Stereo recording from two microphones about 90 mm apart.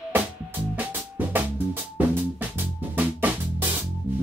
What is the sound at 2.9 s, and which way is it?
Drum kit, 20° right (ahead or behind).